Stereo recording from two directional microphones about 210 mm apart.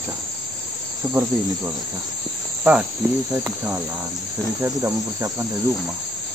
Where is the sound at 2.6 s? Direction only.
5° right (ahead or behind).